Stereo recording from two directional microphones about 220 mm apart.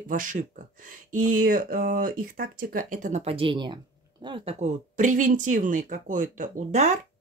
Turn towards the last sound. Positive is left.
turn(degrees=-30)  # may be behind; listen again after turning